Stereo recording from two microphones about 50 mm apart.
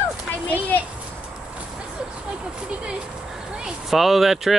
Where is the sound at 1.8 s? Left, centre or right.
Centre.